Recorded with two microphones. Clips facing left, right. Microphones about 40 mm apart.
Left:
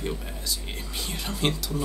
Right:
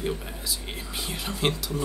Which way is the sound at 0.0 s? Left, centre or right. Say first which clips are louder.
Right 2 dB; centre.